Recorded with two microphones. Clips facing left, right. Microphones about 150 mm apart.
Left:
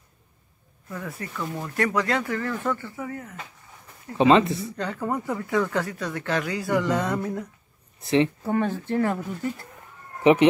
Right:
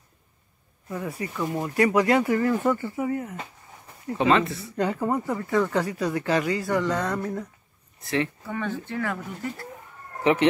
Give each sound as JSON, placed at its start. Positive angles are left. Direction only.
{"t": 0.8, "sound": "speech", "side_deg": -10}
{"t": 4.2, "sound": "speech", "side_deg": 20}
{"t": 4.7, "sound": "speech", "side_deg": -10}
{"t": 8.5, "sound": "speech", "side_deg": 35}
{"t": 10.3, "sound": "speech", "side_deg": 20}